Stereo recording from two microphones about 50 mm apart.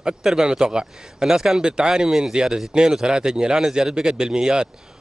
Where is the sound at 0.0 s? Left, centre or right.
Centre.